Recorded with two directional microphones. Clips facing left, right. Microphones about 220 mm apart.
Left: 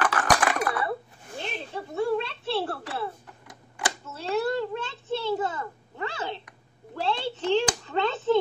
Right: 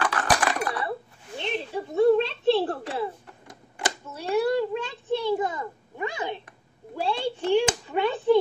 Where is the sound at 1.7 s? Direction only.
20° right (ahead or behind).